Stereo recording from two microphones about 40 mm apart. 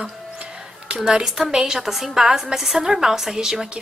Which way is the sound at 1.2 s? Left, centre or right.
Centre.